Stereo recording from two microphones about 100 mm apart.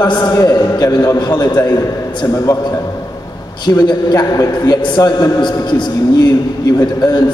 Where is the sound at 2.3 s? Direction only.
35° left (ahead or behind).